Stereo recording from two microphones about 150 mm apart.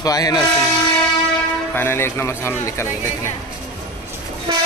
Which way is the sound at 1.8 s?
15° left (ahead or behind).